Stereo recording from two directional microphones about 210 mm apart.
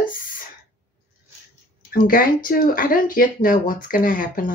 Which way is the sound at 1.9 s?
40° left (ahead or behind).